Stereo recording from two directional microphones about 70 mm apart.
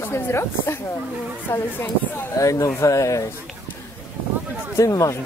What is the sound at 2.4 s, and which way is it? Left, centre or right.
Speech, left.